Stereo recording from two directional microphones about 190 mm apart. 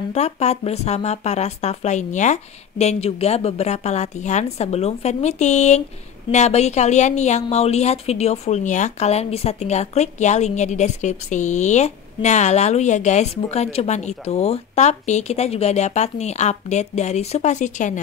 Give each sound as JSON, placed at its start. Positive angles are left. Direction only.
{"t": 0.1, "sound": "a woman's voice", "side_deg": 35}